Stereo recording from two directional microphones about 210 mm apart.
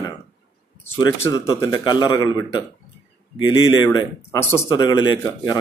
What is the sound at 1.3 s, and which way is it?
A man's voice, 15° left (ahead or behind).